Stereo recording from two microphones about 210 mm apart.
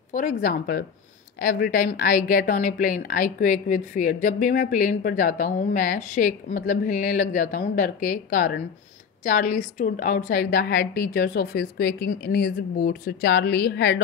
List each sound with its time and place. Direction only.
0.1 s a woman's voice: 40° left (ahead or behind)